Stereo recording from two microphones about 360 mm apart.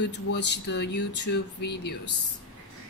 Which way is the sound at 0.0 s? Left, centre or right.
Left.